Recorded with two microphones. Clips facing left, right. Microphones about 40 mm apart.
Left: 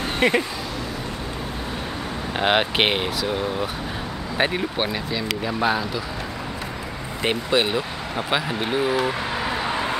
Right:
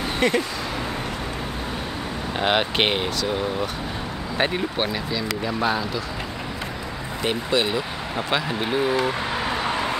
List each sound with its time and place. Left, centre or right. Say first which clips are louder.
0.2 s speech: left 2 dB; left
2.3 s speech: left 1 dB; centre
7.2 s speech: left 1 dB; centre
8.2 s speech: even; centre